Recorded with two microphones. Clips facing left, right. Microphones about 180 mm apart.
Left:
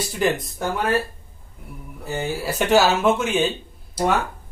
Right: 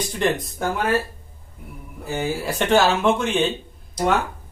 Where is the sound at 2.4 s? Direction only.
5° left (ahead or behind).